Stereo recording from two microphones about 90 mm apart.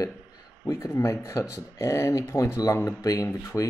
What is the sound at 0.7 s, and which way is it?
Speech, 35° left (ahead or behind).